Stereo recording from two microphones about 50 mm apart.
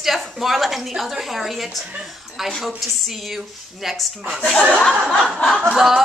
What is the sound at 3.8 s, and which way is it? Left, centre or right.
A woman's voice, centre.